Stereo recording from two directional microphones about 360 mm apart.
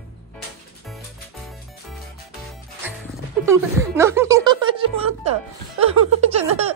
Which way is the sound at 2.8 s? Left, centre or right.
Centre.